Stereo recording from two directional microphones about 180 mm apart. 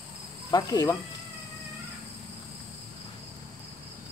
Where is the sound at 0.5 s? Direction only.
20° left (ahead or behind).